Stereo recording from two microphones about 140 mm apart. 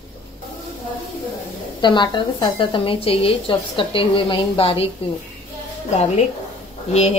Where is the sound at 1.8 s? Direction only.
35° left (ahead or behind).